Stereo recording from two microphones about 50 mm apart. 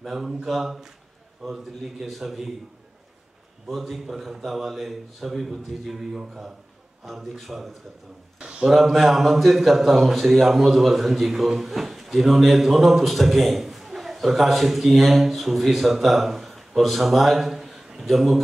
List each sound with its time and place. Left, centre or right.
0.0 s a man's voice: centre
3.6 s a man's voice: centre
8.4 s a sound: centre
8.6 s a man's voice: centre